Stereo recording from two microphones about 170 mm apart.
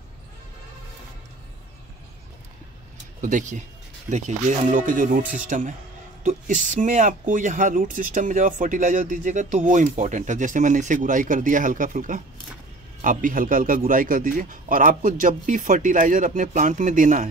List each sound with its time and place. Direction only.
3.2 s speech: 50° right (ahead or behind)